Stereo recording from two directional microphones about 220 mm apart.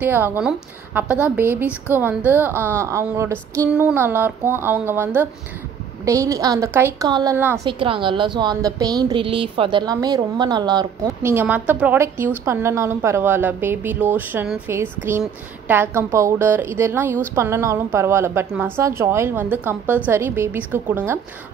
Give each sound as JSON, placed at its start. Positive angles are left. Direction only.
{"t": 0.0, "sound": "a woman's voice", "side_deg": -10}
{"t": 7.6, "sound": "a woman's voice", "side_deg": -25}